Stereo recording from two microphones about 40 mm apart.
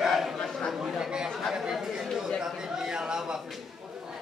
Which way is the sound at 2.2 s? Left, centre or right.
Centre.